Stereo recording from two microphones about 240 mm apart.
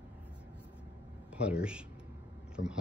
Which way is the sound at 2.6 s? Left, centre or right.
Left.